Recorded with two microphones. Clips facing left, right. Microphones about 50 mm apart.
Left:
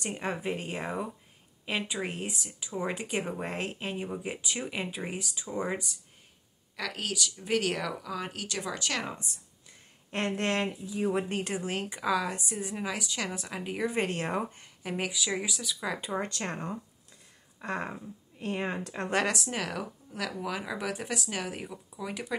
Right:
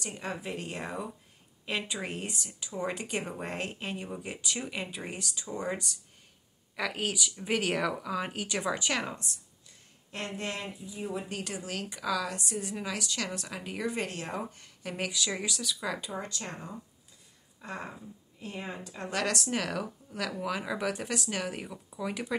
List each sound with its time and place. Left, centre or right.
0.0 s speech: left
6.8 s speech: centre
10.3 s speech: left
11.2 s speech: left; by 13.9 s centre
13.9 s speech: left
14.6 s speech: centre
16.2 s speech: left
17.6 s a sound: left
18.4 s speech: left
19.2 s speech: centre